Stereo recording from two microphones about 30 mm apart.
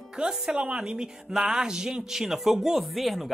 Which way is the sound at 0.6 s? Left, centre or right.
Right.